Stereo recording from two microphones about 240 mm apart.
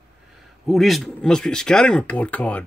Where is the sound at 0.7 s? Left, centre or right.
Centre.